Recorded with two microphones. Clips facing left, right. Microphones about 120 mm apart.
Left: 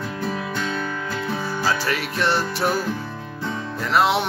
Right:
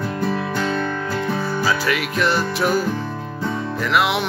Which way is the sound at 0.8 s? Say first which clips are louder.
Right 4 dB; 5° left (ahead or behind).